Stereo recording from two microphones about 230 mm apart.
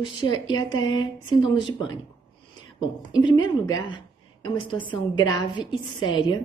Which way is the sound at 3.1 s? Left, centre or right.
Centre.